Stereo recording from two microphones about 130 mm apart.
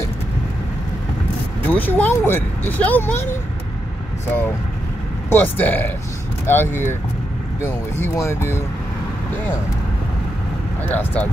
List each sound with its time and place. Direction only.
1.7 s speech: 15° left (ahead or behind)
5.3 s speech: 15° left (ahead or behind)
8.0 s speech: 20° left (ahead or behind)
10.8 s speech: 15° left (ahead or behind)